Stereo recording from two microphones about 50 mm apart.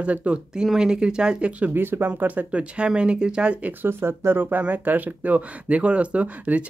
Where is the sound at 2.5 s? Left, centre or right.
Right.